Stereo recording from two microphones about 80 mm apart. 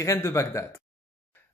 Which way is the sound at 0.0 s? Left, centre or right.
Left.